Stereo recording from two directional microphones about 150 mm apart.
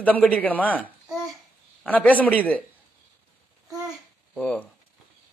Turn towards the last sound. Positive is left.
turn(degrees=5)  # may be behind; listen again after turning